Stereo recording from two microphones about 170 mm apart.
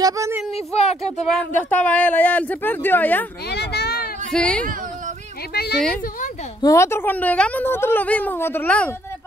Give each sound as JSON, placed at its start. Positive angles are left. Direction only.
{"t": 0.0, "sound": "a woman's voice", "side_deg": -20}
{"t": 0.5, "sound": "speech", "side_deg": 35}
{"t": 1.0, "sound": "speech", "side_deg": 5}
{"t": 3.4, "sound": "a sound", "side_deg": 70}
{"t": 4.3, "sound": "speech", "side_deg": 5}
{"t": 5.5, "sound": "speech", "side_deg": 70}
{"t": 6.6, "sound": "speech", "side_deg": 15}